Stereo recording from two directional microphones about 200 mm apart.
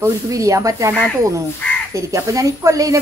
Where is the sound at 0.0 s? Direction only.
15° right (ahead or behind).